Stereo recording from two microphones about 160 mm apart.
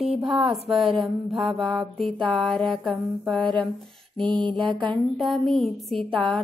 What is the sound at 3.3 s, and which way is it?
Speech, 30° right (ahead or behind).